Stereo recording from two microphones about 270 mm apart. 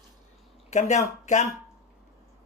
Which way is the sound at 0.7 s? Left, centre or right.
Left.